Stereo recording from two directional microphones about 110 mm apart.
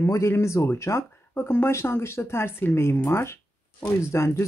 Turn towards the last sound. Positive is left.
turn(degrees=25)  # may be behind; listen again after turning